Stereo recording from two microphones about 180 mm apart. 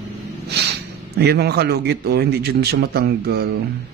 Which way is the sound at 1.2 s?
65° right (ahead or behind).